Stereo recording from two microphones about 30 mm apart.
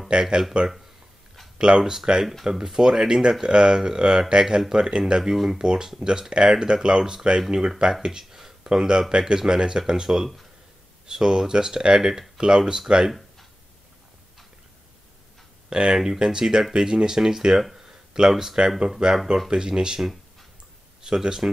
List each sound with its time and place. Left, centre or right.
0.1 s speech: right
2.4 s speech: centre
5.3 s speech: centre
5.6 s speech: right
7.3 s speech: centre
8.0 s a sound: right
8.6 s speech: right
15.9 s speech: centre
17.7 s a sound: centre
18.3 s speech: centre
19.0 s speech: right
19.5 s speech: right
21.0 s speech: right